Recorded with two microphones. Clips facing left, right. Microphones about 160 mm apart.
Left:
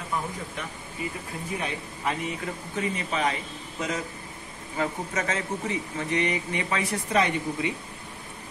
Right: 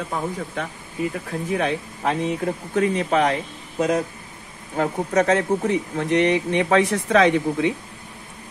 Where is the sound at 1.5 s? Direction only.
80° right.